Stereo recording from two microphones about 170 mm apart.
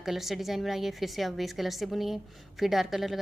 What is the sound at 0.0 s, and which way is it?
A woman's voice, centre (ahead or behind).